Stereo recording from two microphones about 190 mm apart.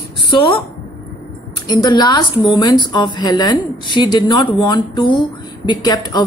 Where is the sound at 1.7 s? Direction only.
20° left (ahead or behind).